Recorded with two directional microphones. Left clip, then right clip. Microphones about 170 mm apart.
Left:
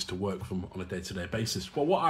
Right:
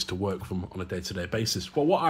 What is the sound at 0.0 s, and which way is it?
Speech, 35° right (ahead or behind).